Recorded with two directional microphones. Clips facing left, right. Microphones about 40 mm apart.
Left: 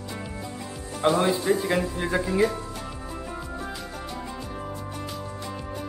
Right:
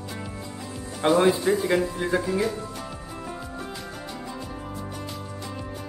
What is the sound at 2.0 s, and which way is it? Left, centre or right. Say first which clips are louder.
Speech: right 2 dB; centre.